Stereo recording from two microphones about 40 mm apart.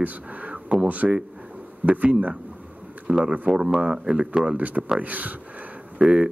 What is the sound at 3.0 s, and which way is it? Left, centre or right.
Speech, right.